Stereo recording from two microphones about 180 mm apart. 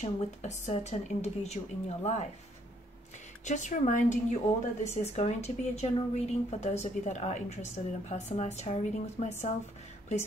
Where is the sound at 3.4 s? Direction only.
45° left (ahead or behind).